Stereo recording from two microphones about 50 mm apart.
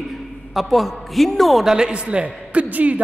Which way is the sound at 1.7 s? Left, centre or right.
Centre.